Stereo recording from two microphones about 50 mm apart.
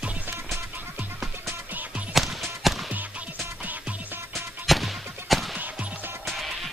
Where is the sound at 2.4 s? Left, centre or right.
Centre.